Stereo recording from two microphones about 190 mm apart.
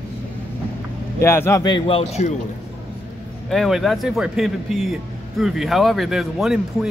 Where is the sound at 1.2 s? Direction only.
15° left (ahead or behind); by 2.3 s 30° left (ahead or behind).